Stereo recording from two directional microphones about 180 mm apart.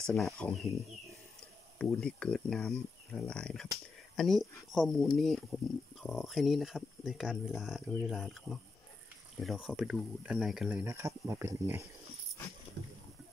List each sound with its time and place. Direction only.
0.0 s speech: centre (ahead or behind)
1.8 s speech: 5° left (ahead or behind); by 11.9 s 15° right (ahead or behind)